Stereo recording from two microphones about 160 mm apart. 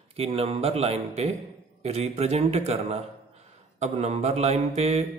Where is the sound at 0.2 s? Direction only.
40° right (ahead or behind).